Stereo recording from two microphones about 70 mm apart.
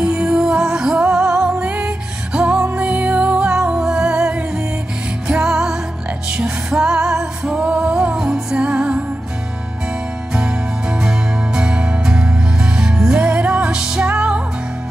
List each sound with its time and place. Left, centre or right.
0.0 s music: centre
10.3 s music: centre